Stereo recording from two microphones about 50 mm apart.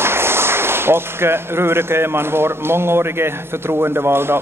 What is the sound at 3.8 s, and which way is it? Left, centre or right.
Speech, right.